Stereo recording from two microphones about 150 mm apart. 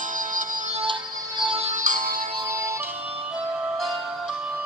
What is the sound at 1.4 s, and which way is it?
Music, 40° right (ahead or behind).